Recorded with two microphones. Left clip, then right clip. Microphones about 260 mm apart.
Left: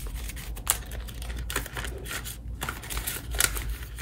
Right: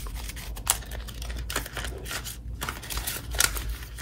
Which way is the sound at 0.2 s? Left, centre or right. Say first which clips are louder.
Right 1 dB; centre.